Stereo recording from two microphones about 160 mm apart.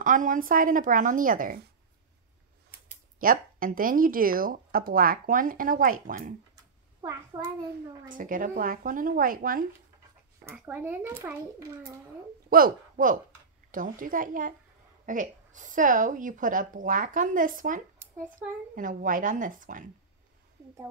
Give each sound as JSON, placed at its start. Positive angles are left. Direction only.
{"t": 0.0, "sound": "speech", "side_deg": -55}
{"t": 3.2, "sound": "speech", "side_deg": -60}
{"t": 7.0, "sound": "a child's voice", "side_deg": -20}
{"t": 8.1, "sound": "speech", "side_deg": -55}
{"t": 10.4, "sound": "speech", "side_deg": -15}
{"t": 12.4, "sound": "speech", "side_deg": -65}